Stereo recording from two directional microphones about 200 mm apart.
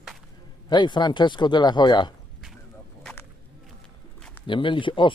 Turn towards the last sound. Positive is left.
turn(degrees=25)  # may be behind; listen again after turning